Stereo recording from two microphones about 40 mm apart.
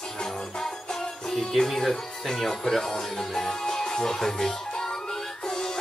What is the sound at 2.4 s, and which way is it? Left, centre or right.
Music, centre.